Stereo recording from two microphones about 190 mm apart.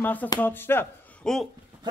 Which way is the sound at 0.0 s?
10° left (ahead or behind).